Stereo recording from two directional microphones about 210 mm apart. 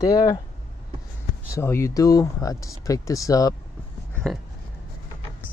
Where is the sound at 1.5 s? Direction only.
15° left (ahead or behind).